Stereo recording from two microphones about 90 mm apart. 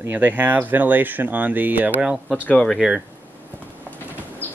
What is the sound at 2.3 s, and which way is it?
Speech, 15° left (ahead or behind).